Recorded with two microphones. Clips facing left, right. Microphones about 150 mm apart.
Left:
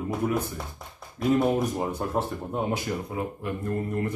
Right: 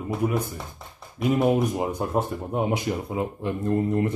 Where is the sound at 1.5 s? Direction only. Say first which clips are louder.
Right 3 dB; 15° right (ahead or behind).